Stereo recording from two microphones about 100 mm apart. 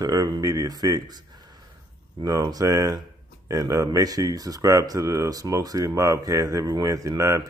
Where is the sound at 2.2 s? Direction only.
40° right (ahead or behind).